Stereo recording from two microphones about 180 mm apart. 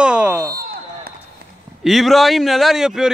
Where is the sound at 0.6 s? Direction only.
55° right (ahead or behind).